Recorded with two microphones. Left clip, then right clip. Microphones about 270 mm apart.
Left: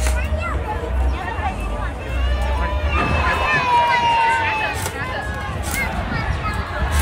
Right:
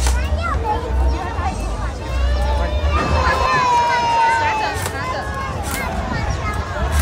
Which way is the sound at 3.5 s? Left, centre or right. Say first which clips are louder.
Left 1 dB; right.